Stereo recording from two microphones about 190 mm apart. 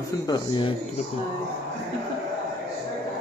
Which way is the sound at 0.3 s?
25° left (ahead or behind).